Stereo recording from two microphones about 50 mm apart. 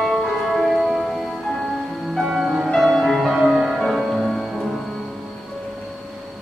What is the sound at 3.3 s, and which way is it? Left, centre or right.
Music, centre.